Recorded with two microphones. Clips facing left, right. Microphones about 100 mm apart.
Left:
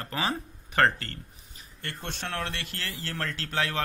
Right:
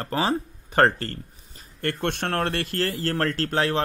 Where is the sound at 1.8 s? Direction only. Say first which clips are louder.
Right 10 dB; 55° right (ahead or behind).